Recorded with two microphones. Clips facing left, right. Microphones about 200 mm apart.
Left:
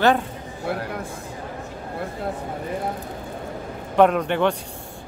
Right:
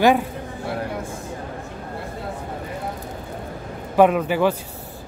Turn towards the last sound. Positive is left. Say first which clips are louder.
# right 1 dB
turn(degrees=-5)  # may be behind; listen again after turning